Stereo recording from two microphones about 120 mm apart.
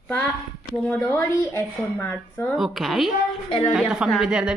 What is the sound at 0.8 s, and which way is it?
Speech, 20° left (ahead or behind).